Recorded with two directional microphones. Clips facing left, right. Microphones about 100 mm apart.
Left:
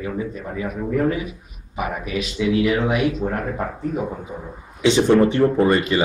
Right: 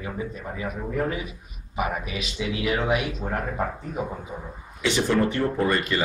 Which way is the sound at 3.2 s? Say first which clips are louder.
Left 3 dB; 5° left (ahead or behind).